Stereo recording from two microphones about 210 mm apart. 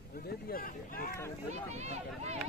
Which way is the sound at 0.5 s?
45° left (ahead or behind).